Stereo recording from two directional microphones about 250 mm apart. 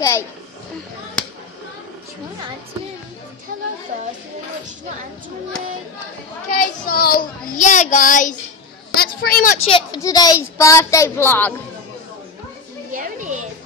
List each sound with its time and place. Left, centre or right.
6.5 s a child's voice: left
9.7 s a child's voice: centre
12.9 s a sound: right